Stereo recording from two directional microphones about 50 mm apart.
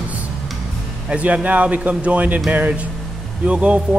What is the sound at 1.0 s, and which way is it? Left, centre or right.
Speech, right.